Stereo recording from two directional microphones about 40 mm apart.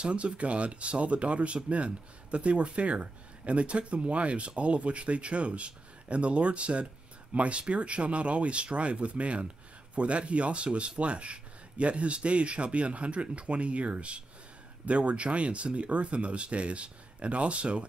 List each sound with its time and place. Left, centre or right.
0.0 s speech: right